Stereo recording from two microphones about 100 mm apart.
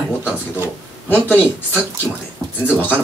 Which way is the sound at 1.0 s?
20° left (ahead or behind).